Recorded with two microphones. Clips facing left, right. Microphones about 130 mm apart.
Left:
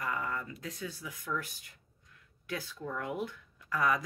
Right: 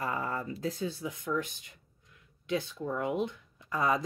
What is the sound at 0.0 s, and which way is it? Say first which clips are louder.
Speech: right 3 dB; 30° right (ahead or behind).